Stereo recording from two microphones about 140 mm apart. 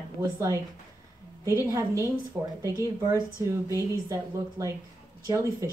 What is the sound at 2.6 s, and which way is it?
Speech, 20° right (ahead or behind).